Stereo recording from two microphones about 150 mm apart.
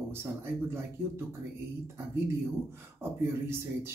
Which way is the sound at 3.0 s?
15° right (ahead or behind).